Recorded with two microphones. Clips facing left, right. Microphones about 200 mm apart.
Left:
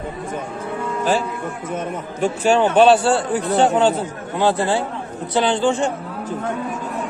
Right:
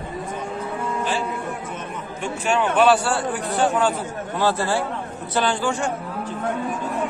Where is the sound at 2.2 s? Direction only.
35° left (ahead or behind).